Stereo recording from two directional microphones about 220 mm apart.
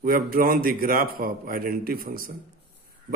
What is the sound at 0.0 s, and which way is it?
A man's voice, 40° right (ahead or behind).